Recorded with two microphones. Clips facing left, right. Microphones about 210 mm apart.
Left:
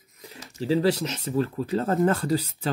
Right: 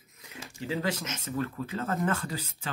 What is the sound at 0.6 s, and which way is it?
Speech, 35° left (ahead or behind).